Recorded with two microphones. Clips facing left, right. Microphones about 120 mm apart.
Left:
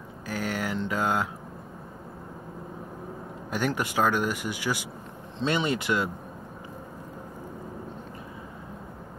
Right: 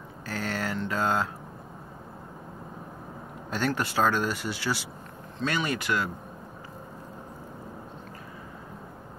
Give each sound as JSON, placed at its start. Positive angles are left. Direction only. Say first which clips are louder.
{"t": 0.3, "sound": "speech", "louder": "left 1 dB", "side_deg": 10}
{"t": 3.4, "sound": "speech", "louder": "even", "side_deg": 15}